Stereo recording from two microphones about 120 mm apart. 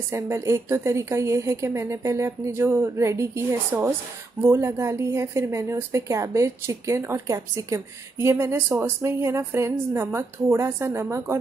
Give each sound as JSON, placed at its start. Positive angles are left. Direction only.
{"t": 0.1, "sound": "a woman's voice", "side_deg": -25}